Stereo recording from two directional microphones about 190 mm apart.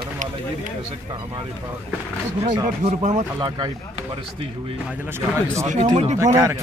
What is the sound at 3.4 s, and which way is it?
Speech, 25° right (ahead or behind).